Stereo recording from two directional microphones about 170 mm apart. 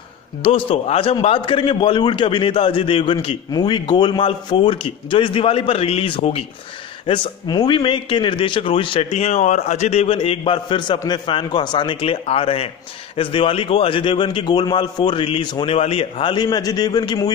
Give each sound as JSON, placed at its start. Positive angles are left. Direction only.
{"t": 0.4, "sound": "a man's voice", "side_deg": 35}
{"t": 7.1, "sound": "a man's voice", "side_deg": 25}